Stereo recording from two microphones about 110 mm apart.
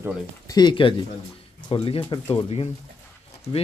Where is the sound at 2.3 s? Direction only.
65° left (ahead or behind).